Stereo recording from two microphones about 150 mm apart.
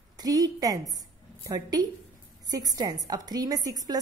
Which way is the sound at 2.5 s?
25° right (ahead or behind).